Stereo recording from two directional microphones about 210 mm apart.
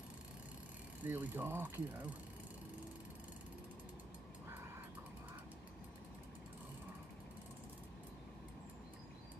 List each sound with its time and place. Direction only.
1.0 s speech: 10° right (ahead or behind)